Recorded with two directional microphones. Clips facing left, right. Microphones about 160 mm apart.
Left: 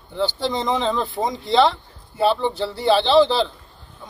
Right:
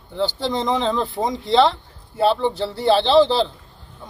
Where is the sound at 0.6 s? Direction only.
20° right (ahead or behind).